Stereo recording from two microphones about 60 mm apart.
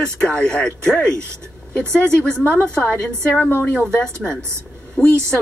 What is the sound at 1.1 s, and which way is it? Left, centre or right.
Speech, right.